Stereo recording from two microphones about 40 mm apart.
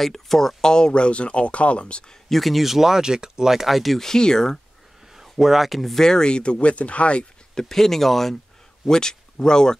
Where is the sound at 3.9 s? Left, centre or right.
Centre.